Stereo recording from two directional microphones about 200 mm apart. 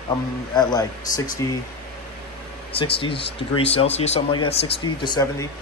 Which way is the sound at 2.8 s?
25° left (ahead or behind).